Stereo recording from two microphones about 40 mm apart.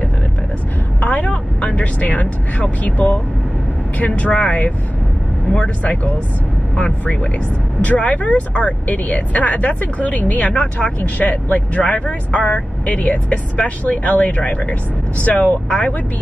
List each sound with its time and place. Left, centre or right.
1.0 s speech: left
4.1 s speech: left
6.8 s speech: left
10.5 s speech: left
11.0 s speech: left
11.5 s speech: left
15.4 s speech: left